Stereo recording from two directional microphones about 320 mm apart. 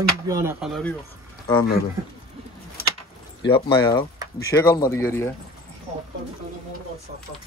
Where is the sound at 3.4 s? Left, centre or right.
Centre.